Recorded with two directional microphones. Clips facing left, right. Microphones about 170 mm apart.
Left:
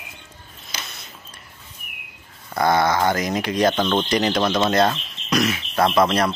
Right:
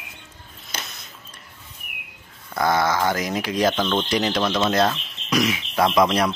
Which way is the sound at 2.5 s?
Centre (ahead or behind).